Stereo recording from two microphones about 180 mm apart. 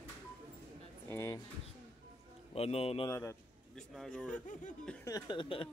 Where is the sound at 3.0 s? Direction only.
15° left (ahead or behind).